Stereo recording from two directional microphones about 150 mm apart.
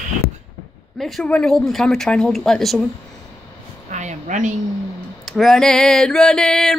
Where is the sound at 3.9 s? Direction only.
55° right (ahead or behind).